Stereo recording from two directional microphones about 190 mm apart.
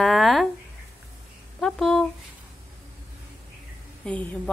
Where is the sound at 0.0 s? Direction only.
Centre (ahead or behind).